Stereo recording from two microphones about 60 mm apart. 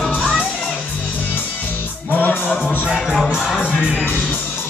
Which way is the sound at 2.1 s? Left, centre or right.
Left.